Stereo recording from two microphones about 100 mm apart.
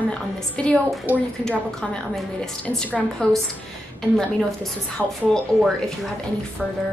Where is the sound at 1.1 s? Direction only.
15° right (ahead or behind).